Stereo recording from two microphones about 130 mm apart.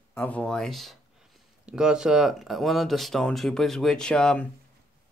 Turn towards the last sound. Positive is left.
turn(degrees=5)  # may be behind; listen again after turning